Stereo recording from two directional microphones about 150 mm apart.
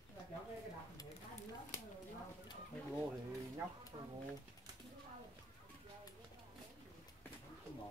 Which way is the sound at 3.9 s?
35° right (ahead or behind).